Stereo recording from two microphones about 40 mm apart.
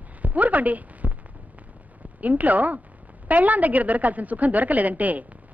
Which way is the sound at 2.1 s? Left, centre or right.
Right.